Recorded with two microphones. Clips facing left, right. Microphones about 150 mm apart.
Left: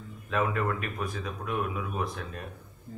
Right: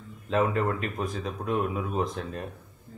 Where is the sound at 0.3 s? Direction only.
30° right (ahead or behind).